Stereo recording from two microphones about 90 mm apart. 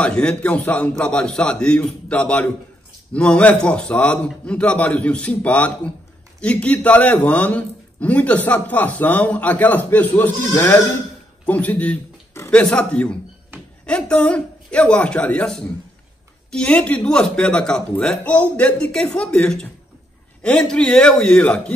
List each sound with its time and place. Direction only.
0.0 s a man's voice: 10° left (ahead or behind)
10.4 s speech: 35° left (ahead or behind)
11.4 s a man's voice: 15° left (ahead or behind)